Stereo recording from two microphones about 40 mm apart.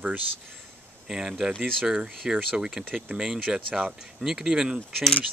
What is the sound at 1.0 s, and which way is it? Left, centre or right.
Speech, centre.